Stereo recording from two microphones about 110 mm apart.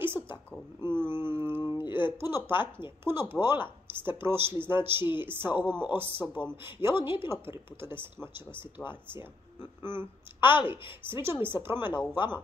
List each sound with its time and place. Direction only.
0.0 s a sound: 20° right (ahead or behind)
1.7 s speech: 20° right (ahead or behind)
11.9 s speech: 10° left (ahead or behind)